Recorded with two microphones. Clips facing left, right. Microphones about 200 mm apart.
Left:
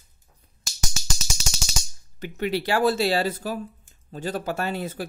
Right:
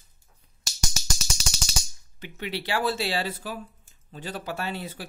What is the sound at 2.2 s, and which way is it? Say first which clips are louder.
Speech: left 7 dB; 45° left (ahead or behind).